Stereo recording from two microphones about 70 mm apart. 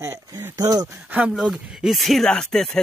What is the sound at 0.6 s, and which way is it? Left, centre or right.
Speech, right.